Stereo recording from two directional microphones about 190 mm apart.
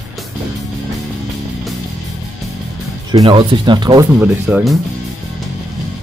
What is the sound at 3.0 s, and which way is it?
Speech, 25° right (ahead or behind).